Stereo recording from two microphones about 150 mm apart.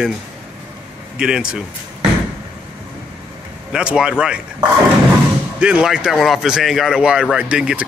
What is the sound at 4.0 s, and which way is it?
Speech, 5° right (ahead or behind).